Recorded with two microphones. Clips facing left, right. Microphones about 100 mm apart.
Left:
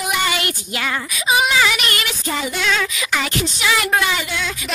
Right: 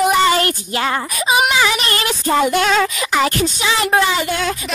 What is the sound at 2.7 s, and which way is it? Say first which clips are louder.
Music: right 5 dB; 35° right (ahead or behind).